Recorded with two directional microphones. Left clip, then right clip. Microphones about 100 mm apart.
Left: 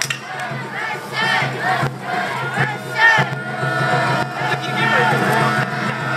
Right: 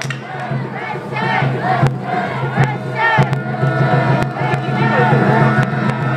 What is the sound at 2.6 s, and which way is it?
Crowd, 15° left (ahead or behind).